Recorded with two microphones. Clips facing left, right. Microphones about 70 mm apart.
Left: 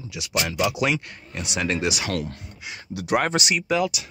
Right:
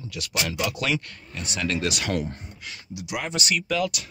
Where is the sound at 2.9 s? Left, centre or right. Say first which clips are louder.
Left 9 dB; left.